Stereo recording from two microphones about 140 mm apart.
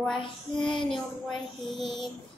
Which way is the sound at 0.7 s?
35° left (ahead or behind).